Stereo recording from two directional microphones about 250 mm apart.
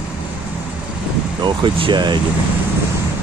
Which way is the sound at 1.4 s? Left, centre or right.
Centre.